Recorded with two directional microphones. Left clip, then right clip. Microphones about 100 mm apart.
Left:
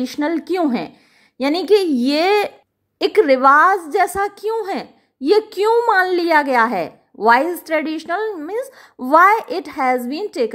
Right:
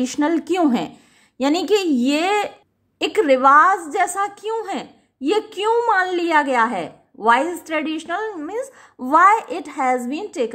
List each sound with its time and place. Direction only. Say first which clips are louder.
0.0 s a woman's voice: right 1 dB; 15° left (ahead or behind); by 6.2 s 55° left (ahead or behind)
6.2 s a woman's voice: left 2 dB; 40° left (ahead or behind)